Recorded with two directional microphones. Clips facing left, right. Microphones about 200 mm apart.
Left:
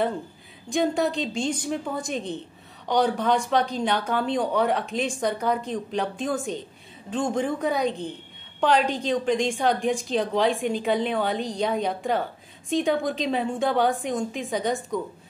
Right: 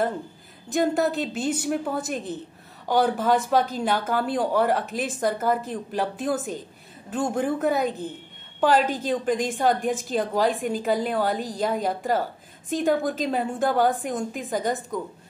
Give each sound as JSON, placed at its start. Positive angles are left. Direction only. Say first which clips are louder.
{"t": 0.7, "sound": "a woman's voice", "louder": "right 1 dB", "side_deg": -5}